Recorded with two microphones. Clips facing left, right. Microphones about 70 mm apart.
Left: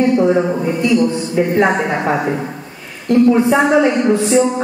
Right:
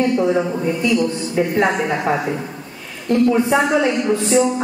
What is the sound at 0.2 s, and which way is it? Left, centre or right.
A woman's voice, left.